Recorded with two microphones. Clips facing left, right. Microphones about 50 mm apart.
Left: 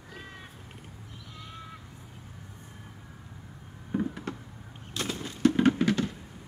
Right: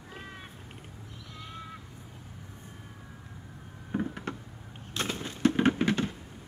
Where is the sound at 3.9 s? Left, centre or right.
Right.